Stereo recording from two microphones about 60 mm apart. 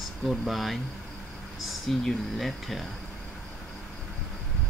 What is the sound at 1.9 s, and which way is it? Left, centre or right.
Speech, centre.